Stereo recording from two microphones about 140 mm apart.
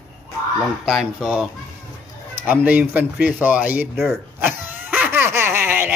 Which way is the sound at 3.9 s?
Centre (ahead or behind).